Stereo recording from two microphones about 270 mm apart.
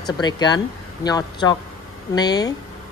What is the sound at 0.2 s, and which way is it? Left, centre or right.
Speech, centre.